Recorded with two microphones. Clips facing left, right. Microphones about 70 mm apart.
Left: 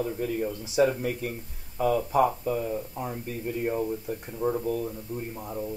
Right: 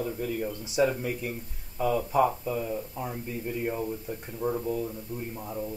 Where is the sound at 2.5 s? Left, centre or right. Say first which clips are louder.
Left 2 dB; centre.